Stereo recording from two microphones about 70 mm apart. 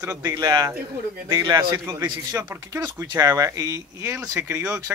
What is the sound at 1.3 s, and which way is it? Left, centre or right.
Speech, right.